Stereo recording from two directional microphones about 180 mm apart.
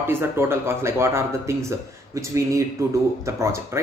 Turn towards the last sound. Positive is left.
turn(degrees=-15)  # may be behind; listen again after turning